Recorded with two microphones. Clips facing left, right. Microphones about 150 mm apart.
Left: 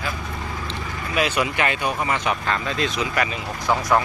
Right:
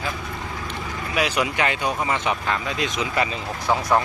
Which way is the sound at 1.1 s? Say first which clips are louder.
Left 1 dB; 15° right (ahead or behind).